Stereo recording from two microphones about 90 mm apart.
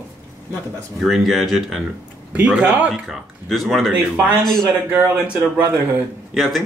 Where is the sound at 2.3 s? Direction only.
15° right (ahead or behind).